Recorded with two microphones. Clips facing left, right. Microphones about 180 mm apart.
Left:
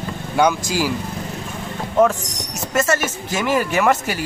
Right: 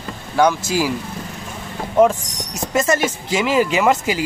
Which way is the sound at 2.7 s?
15° right (ahead or behind).